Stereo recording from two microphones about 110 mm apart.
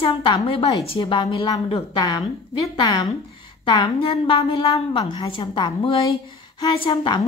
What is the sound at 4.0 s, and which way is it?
A woman's voice, 55° left (ahead or behind).